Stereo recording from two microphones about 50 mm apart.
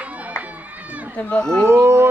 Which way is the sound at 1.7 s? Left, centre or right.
Right.